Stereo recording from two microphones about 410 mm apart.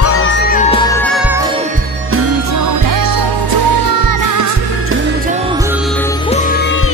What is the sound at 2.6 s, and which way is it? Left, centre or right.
Music, right.